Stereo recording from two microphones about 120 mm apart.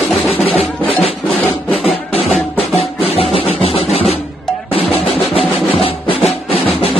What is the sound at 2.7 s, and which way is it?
Music, 55° left (ahead or behind).